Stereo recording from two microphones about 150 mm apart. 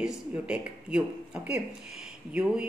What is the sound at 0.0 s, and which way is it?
Speech, 5° right (ahead or behind).